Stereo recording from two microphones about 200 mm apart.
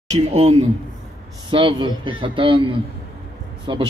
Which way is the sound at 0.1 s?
30° right (ahead or behind).